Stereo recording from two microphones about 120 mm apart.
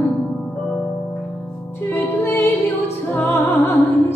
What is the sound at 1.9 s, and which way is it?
Music, 20° left (ahead or behind).